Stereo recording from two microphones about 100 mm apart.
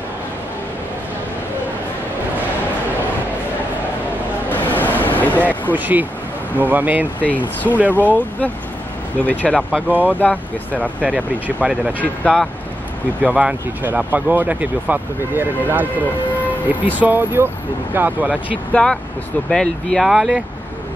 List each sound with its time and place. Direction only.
4.5 s vehicle: 20° left (ahead or behind)
5.7 s speech: 20° right (ahead or behind)
7.2 s speech: 15° left (ahead or behind)
9.8 s speech: 15° right (ahead or behind)
12.0 s speech: 10° left (ahead or behind)
13.2 s speech: 10° right (ahead or behind)
18.7 s speech: 10° left (ahead or behind)
20.1 s speech: 5° right (ahead or behind)